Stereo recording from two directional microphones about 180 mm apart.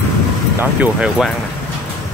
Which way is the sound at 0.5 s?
5° right (ahead or behind).